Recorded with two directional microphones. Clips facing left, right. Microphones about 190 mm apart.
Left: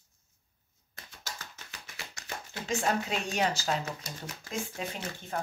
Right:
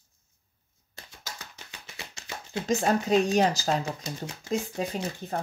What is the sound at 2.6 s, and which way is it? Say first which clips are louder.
Speech: right 5 dB; 40° right (ahead or behind).